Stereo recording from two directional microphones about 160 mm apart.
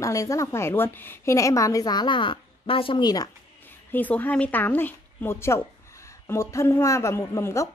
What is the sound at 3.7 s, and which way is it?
A woman's voice, 10° left (ahead or behind).